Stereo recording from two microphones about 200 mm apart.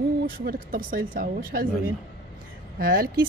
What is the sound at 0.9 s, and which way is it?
Speech, 45° right (ahead or behind).